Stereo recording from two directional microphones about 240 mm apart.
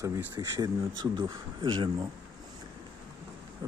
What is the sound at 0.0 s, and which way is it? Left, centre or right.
Speech, centre.